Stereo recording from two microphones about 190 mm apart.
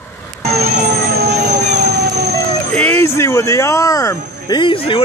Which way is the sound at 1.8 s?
60° right (ahead or behind).